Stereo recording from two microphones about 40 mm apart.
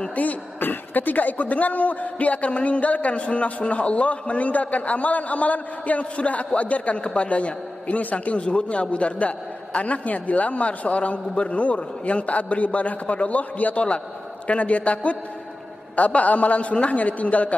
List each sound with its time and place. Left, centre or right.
0.1 s a man's voice: left
0.6 s a man's voice: left
8.4 s a man's voice: left